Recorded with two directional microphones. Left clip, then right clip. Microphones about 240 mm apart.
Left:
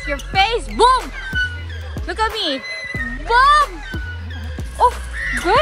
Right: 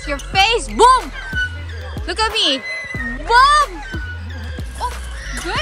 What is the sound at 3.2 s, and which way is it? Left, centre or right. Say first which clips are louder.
Music: right 1 dB; centre.